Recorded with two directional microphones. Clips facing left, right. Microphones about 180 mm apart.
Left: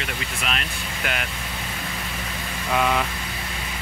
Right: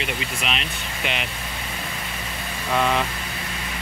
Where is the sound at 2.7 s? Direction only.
Centre (ahead or behind).